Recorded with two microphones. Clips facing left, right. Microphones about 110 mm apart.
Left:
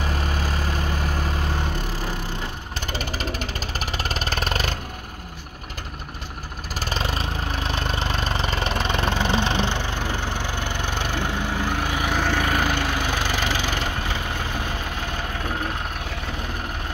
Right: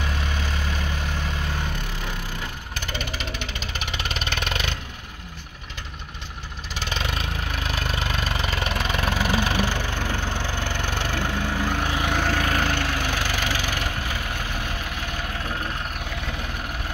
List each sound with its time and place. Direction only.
0.0 s vehicle: 35° left (ahead or behind)
2.9 s vehicle: 35° left (ahead or behind)
6.7 s vehicle: 40° left (ahead or behind); by 12.1 s 15° left (ahead or behind)
12.2 s a sound: 10° left (ahead or behind)